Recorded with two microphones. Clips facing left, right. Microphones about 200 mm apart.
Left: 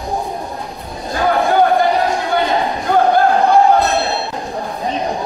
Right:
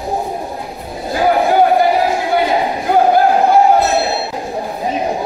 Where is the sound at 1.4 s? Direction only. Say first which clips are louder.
Even; 10° right (ahead or behind).